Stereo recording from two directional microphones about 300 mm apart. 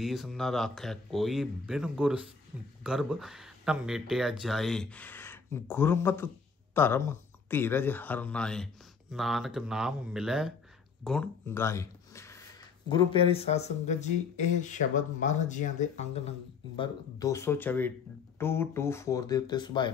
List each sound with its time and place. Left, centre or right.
0.0 s speech: centre